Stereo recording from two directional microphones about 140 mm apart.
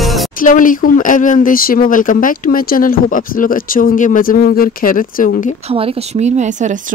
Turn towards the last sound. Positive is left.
turn(degrees=-55)  # may be behind; listen again after turning